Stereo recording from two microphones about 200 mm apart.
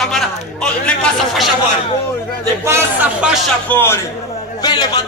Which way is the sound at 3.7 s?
10° left (ahead or behind).